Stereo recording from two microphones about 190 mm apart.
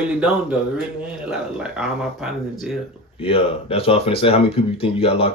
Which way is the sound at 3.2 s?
30° left (ahead or behind).